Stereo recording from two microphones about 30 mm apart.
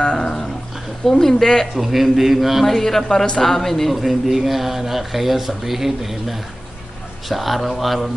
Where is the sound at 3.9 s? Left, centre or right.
Centre.